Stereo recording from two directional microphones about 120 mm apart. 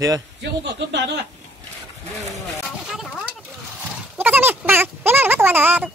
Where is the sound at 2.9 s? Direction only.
5° right (ahead or behind).